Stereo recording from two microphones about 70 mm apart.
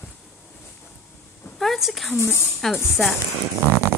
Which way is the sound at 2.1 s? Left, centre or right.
Left.